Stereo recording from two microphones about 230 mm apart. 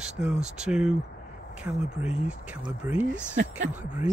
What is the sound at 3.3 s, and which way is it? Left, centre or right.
Speech, right.